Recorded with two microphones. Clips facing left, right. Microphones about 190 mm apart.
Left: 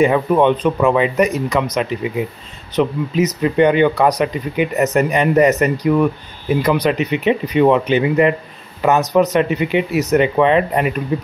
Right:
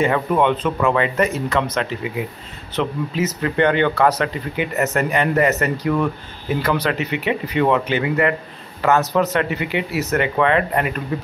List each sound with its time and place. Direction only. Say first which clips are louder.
0.0 s speech: left 4 dB; 15° left (ahead or behind)